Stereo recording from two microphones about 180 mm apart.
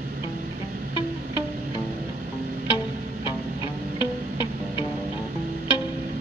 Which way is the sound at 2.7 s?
25° left (ahead or behind).